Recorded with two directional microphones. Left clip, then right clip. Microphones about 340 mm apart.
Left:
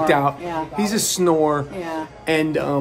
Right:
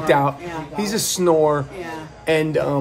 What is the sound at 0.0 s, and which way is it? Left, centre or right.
Speech, centre.